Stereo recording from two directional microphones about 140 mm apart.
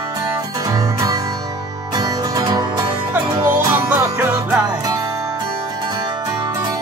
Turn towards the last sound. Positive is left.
turn(degrees=-20)  # may be behind; listen again after turning